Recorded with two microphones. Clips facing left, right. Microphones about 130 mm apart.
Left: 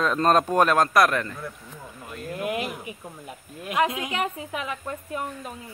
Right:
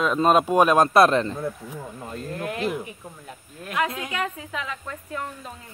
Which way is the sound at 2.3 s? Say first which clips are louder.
Right 1 dB; 15° left (ahead or behind).